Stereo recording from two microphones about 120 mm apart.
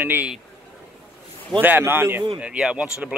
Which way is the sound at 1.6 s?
15° right (ahead or behind).